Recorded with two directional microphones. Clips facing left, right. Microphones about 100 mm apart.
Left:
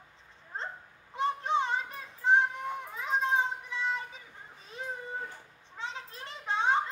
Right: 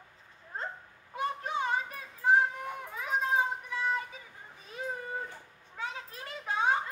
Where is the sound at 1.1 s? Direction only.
25° left (ahead or behind).